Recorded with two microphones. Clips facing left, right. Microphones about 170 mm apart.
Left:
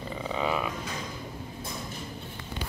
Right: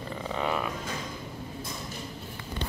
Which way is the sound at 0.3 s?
5° left (ahead or behind).